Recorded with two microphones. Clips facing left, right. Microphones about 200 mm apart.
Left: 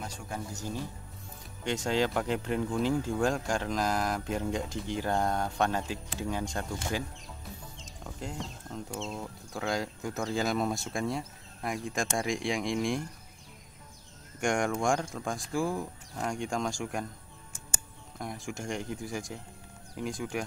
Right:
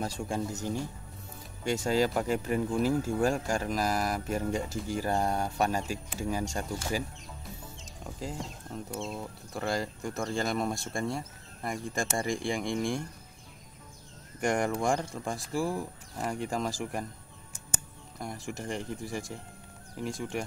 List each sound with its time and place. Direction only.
0.0 s speech: 25° right (ahead or behind)
1.6 s speech: 10° right (ahead or behind)
8.2 s speech: 5° right (ahead or behind)
14.4 s speech: 5° right (ahead or behind)
18.2 s speech: centre (ahead or behind)